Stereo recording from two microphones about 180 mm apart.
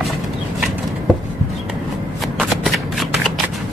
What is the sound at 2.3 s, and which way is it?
Shuffling cards, centre (ahead or behind).